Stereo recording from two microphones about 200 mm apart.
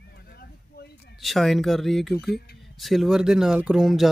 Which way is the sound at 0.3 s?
50° left (ahead or behind).